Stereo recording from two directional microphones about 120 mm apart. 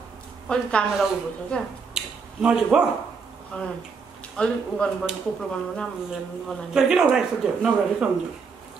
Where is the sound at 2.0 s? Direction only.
5° right (ahead or behind).